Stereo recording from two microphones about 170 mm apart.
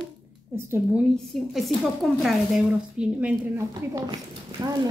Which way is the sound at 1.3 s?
Centre (ahead or behind).